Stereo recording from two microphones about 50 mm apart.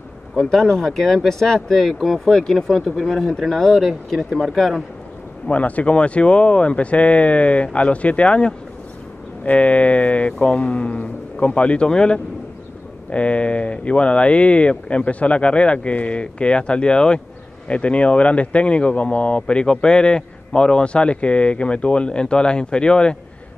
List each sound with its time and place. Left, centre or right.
0.6 s speech: centre
2.2 s speech: centre
5.5 s speech: left